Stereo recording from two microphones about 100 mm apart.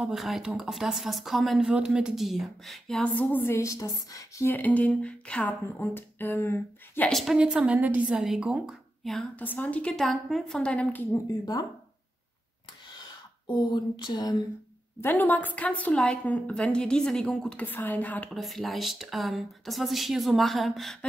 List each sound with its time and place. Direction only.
0.0 s speech: centre (ahead or behind)
3.0 s a woman's voice: 15° left (ahead or behind); by 4.5 s 35° left (ahead or behind)
4.5 s a woman's voice: 15° left (ahead or behind)
7.1 s a woman's voice: centre (ahead or behind)
9.3 s a woman's voice: 15° left (ahead or behind)
11.1 s speech: 35° left (ahead or behind)
12.9 s a sound: 40° left (ahead or behind)
15.0 s a woman's voice: 20° left (ahead or behind)
17.6 s a woman's voice: 20° left (ahead or behind)
18.3 s speech: centre (ahead or behind)